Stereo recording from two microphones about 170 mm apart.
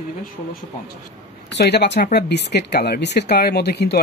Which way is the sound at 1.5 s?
80° left.